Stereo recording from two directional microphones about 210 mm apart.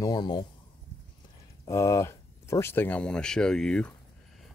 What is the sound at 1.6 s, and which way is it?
Speech, 15° left (ahead or behind).